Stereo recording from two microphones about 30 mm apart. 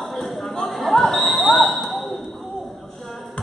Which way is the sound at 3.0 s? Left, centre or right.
Centre.